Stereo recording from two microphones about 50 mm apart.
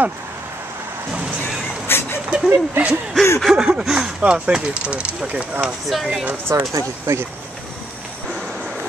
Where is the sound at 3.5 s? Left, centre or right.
Centre.